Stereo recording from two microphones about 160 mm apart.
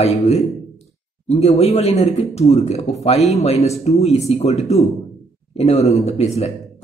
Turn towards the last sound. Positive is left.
turn(degrees=40)  # may be behind; listen again after turning